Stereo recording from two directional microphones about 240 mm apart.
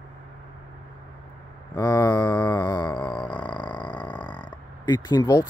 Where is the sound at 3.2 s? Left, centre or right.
Centre.